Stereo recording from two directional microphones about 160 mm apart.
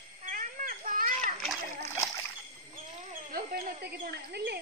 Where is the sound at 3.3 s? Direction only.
70° right (ahead or behind); by 4.6 s 90° right.